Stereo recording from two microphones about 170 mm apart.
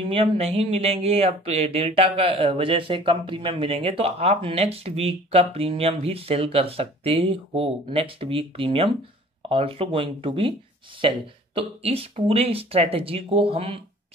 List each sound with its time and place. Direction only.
0.0 s speech: 35° right (ahead or behind)